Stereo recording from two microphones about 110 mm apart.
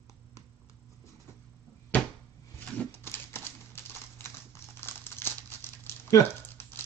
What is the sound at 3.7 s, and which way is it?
Crumpling, 25° left (ahead or behind).